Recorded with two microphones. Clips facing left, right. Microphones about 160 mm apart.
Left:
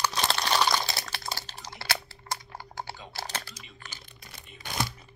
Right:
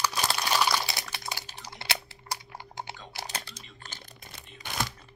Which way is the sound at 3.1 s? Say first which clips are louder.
Left 2 dB; 25° right (ahead or behind).